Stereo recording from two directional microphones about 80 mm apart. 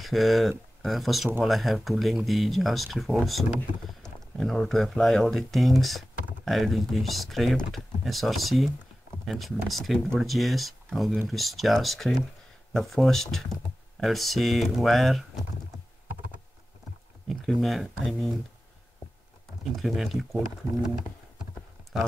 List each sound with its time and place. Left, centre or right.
0.0 s speech: centre
17.3 s speech: centre
19.7 s speech: centre
20.8 s typing: centre